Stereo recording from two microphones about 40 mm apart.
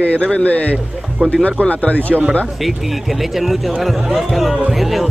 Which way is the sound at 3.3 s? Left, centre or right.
Centre.